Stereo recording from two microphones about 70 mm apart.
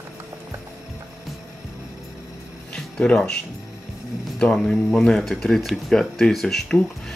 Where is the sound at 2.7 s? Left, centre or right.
Centre.